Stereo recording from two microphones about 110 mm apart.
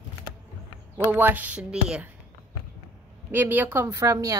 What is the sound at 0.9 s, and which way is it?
A woman's voice, 20° right (ahead or behind).